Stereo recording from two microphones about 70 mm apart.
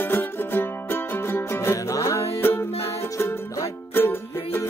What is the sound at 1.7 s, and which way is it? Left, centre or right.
Music, left.